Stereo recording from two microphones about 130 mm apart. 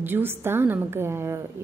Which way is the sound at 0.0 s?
15° right (ahead or behind).